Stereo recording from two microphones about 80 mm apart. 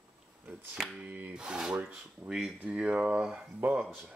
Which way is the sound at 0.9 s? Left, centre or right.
Centre.